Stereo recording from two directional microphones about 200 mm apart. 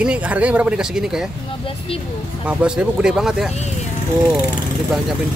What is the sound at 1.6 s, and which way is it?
Speech, 30° left (ahead or behind).